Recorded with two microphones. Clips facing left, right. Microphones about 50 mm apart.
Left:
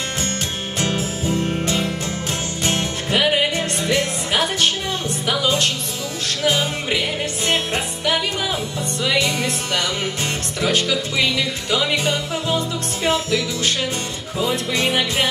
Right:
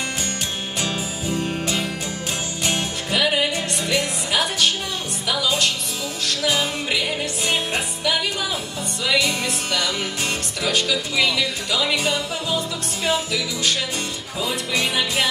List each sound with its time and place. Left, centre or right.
1.2 s music: left
10.6 s music: left
12.1 s music: left